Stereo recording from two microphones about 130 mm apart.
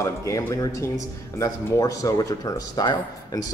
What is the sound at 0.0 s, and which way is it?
Speech, 25° left (ahead or behind).